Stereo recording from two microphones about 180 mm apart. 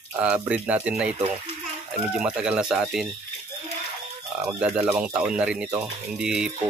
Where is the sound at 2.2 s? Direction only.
5° right (ahead or behind).